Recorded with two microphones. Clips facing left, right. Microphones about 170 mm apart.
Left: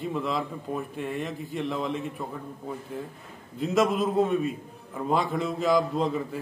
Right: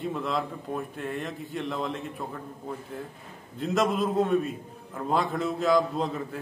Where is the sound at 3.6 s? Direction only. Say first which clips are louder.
Left 2 dB; centre (ahead or behind).